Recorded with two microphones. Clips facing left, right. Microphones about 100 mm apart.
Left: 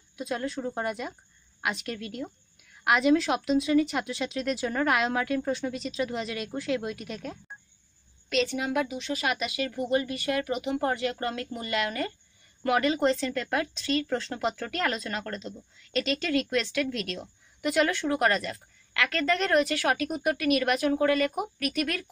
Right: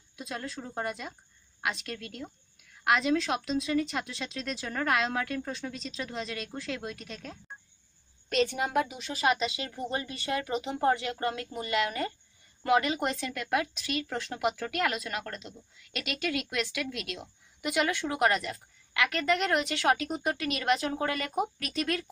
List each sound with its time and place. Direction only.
0.1 s speech: centre (ahead or behind)
8.3 s speech: 40° right (ahead or behind)